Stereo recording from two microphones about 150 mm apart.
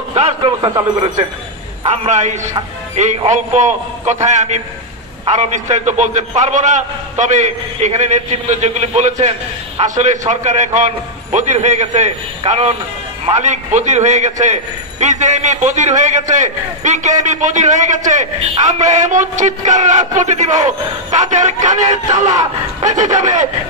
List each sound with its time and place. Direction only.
0.1 s a man's voice: 35° right (ahead or behind)
1.9 s a man's voice: 50° right (ahead or behind)